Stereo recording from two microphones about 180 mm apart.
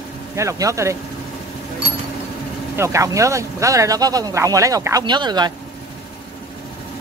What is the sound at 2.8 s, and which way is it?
Speech, 15° right (ahead or behind).